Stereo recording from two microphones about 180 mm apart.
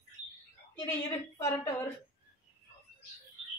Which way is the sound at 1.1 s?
15° left (ahead or behind).